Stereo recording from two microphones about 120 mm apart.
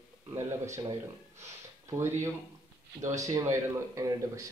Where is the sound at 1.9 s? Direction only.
20° right (ahead or behind).